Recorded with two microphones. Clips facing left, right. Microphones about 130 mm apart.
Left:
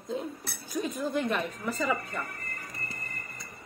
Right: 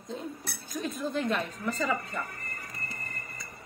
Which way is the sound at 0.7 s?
15° left (ahead or behind).